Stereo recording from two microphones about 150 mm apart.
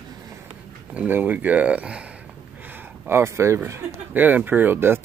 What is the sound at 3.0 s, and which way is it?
Speech, 15° right (ahead or behind).